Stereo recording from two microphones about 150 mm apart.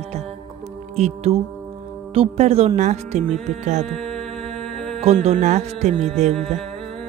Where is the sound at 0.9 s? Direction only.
45° right (ahead or behind).